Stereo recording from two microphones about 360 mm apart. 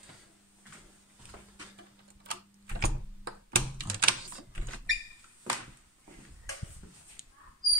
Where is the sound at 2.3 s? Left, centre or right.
Right.